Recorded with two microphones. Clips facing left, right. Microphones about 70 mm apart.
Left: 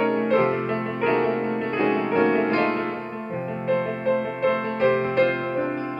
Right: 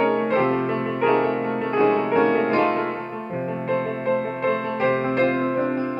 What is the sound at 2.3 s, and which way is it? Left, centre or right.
Music, centre.